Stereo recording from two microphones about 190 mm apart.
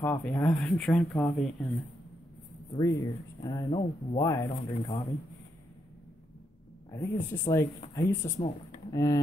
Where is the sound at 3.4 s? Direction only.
20° left (ahead or behind).